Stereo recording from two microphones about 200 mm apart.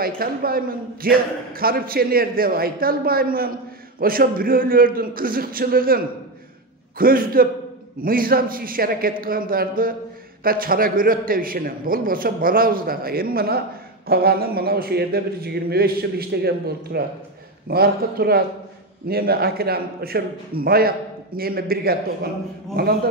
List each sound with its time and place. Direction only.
0.0 s a man's voice: 45° right (ahead or behind)